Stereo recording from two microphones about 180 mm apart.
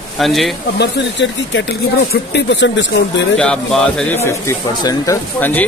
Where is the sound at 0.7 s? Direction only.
75° left (ahead or behind).